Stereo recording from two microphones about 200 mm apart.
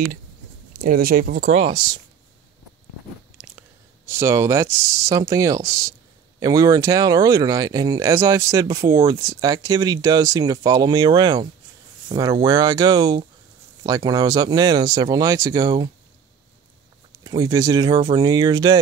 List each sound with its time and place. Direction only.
0.7 s speech: 45° right (ahead or behind)
1.5 s speech: 25° right (ahead or behind)
3.3 s speech: 5° right (ahead or behind)
17.1 s speech: 20° right (ahead or behind)